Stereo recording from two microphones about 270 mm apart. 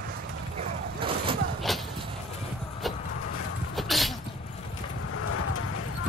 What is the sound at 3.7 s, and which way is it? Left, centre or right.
Sneeze, centre.